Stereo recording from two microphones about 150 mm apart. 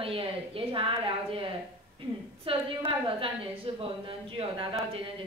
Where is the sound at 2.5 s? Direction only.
35° right (ahead or behind).